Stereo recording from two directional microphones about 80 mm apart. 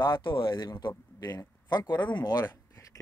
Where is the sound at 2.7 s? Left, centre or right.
Left.